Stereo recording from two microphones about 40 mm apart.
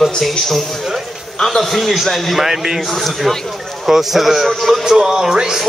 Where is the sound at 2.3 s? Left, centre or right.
Centre.